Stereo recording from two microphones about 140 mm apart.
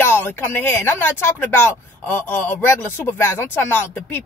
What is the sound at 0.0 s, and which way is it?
Speech, 15° left (ahead or behind).